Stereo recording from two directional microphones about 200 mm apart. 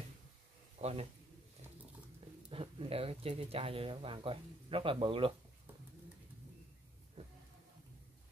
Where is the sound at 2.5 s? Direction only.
30° right (ahead or behind).